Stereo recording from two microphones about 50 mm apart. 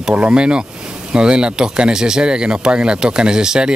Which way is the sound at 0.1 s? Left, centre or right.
Right.